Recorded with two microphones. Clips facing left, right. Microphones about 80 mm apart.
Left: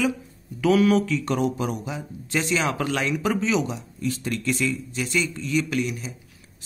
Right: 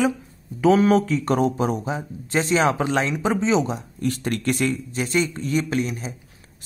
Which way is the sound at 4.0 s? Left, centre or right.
Right.